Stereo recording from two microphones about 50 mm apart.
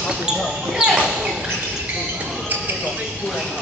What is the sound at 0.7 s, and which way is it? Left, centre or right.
Basketball bounce, centre.